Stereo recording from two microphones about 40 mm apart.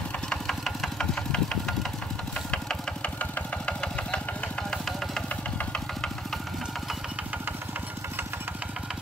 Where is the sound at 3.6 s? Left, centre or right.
Left.